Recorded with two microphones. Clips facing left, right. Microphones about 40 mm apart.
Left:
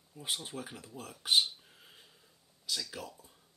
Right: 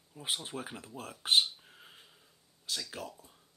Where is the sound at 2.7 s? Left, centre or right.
Right.